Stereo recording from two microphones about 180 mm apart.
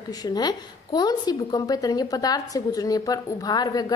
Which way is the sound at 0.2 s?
20° left (ahead or behind).